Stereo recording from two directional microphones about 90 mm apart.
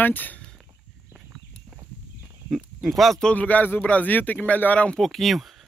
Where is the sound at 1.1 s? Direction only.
10° right (ahead or behind).